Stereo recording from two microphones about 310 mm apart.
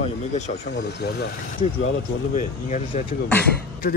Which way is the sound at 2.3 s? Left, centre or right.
Left.